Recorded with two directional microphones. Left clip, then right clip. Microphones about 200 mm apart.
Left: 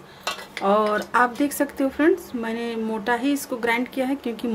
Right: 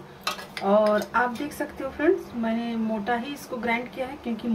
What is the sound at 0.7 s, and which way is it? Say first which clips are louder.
A woman's voice: left 1 dB; 55° left (ahead or behind).